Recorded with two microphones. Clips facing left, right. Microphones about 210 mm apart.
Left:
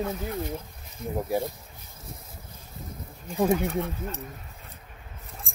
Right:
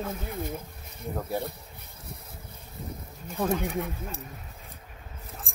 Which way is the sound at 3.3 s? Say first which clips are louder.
Left 4 dB; 10° left (ahead or behind).